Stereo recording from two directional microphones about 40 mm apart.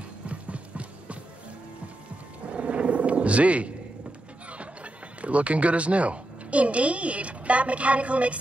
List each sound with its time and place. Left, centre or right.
0.3 s music: right
2.4 s music: right
4.5 s speech: right